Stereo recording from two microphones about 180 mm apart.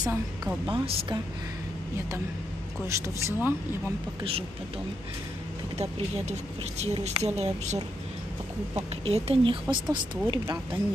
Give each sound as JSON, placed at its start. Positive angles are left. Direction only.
{"t": 0.0, "sound": "a woman's voice", "side_deg": -15}
{"t": 0.7, "sound": "speech", "side_deg": -30}
{"t": 2.9, "sound": "speech", "side_deg": -15}
{"t": 4.2, "sound": "speech", "side_deg": -30}
{"t": 5.8, "sound": "speech", "side_deg": -40}
{"t": 9.0, "sound": "speech", "side_deg": -30}